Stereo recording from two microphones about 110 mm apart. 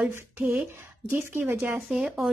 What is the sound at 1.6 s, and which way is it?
Speech, 10° right (ahead or behind).